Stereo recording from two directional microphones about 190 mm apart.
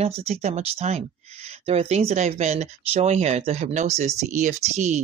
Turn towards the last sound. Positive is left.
turn(degrees=-35)  # may be behind; listen again after turning